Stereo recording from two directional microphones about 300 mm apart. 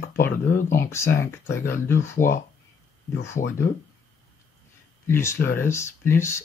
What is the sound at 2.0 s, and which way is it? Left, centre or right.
Speech, left.